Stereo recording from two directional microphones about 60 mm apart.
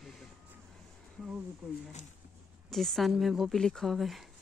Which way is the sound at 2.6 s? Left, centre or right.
Centre.